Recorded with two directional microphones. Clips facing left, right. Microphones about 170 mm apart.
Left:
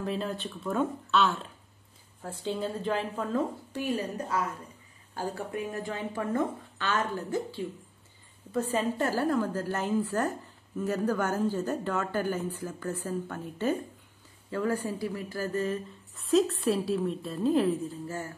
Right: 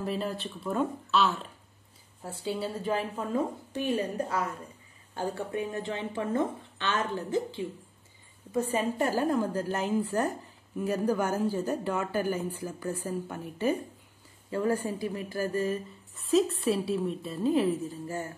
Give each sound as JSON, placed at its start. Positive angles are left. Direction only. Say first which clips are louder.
{"t": 0.0, "sound": "speech", "louder": "even", "side_deg": 0}
{"t": 3.8, "sound": "a woman's voice", "louder": "right 2 dB", "side_deg": -30}
{"t": 16.3, "sound": "speech", "louder": "even", "side_deg": 0}
{"t": 17.8, "sound": "speech", "louder": "right 1 dB", "side_deg": -15}